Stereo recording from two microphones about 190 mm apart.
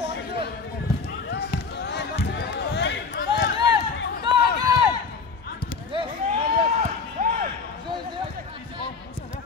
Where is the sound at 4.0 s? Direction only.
60° left (ahead or behind).